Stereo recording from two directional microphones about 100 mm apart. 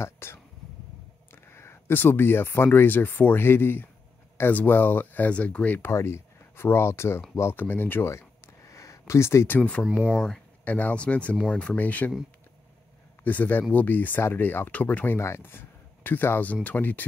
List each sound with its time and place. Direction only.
0.0 s speech: 25° left (ahead or behind)
5.9 s speech: 25° left (ahead or behind)
9.6 s speech: 10° left (ahead or behind)
13.2 s speech: 15° left (ahead or behind)
15.1 s speech: 25° left (ahead or behind)